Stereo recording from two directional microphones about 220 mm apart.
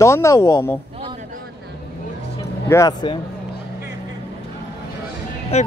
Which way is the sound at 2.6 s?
15° left (ahead or behind).